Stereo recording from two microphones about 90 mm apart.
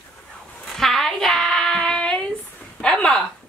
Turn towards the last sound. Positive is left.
turn(degrees=10)  # may be behind; listen again after turning